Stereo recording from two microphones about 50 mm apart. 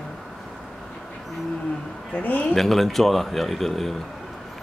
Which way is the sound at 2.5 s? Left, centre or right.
Centre.